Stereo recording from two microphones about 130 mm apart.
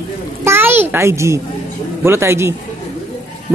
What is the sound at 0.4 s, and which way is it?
A child's voice, 20° right (ahead or behind).